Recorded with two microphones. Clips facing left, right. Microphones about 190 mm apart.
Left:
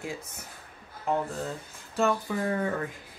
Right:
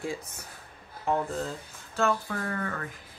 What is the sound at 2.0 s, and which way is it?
Speech, 15° left (ahead or behind).